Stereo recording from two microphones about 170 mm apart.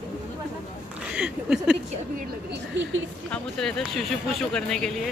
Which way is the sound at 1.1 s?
5° right (ahead or behind).